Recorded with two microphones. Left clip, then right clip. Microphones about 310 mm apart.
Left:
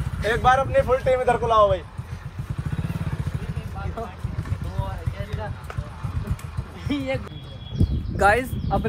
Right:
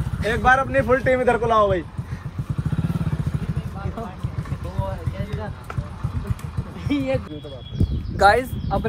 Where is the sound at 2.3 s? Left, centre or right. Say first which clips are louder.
Right 4 dB; centre.